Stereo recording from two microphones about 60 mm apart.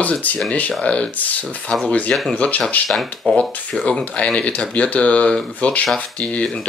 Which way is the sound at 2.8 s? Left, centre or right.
Centre.